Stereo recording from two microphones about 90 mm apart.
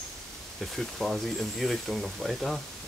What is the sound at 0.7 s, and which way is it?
Speech, centre (ahead or behind).